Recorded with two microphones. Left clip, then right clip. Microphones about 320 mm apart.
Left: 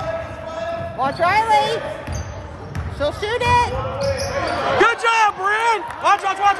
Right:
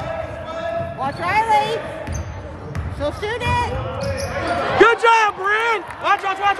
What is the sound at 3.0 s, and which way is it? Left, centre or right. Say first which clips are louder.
Speech: left 3 dB; left.